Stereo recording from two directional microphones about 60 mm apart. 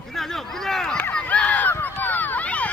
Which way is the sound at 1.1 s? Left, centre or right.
Left.